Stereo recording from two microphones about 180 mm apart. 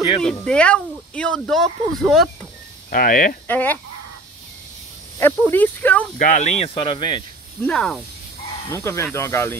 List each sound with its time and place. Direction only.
0.2 s speech: 5° left (ahead or behind)
2.9 s speech: 50° left (ahead or behind)
3.4 s speech: 10° left (ahead or behind)
5.5 s speech: 10° left (ahead or behind)
6.1 s speech: 45° left (ahead or behind); by 7.2 s 25° left (ahead or behind)
7.6 s speech: 5° left (ahead or behind)
8.6 s speech: 15° left (ahead or behind)